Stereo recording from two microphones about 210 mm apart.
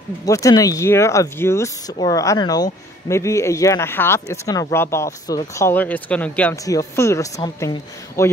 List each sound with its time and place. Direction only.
0.2 s speech: 15° left (ahead or behind)